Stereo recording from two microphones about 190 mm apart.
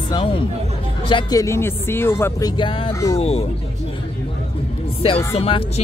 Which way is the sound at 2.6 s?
25° left (ahead or behind).